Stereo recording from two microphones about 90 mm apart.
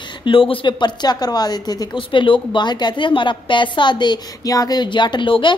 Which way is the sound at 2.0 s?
70° left (ahead or behind).